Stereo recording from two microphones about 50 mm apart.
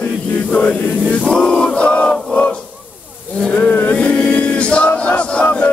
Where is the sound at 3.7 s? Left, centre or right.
Left.